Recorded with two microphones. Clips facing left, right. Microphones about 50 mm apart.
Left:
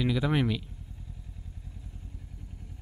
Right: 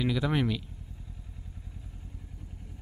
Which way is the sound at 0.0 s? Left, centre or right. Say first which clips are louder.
Left 1 dB; centre.